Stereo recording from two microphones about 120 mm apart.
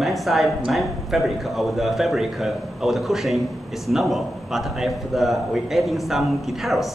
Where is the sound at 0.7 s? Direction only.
Centre (ahead or behind).